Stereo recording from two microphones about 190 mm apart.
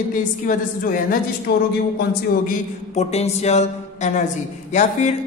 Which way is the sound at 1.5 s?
55° left (ahead or behind).